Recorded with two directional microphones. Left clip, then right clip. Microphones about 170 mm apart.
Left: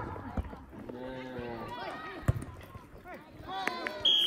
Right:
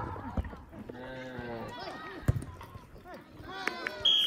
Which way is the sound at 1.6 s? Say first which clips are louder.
Left 2 dB; 40° left (ahead or behind).